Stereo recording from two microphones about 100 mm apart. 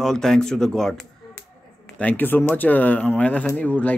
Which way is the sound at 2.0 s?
15° left (ahead or behind).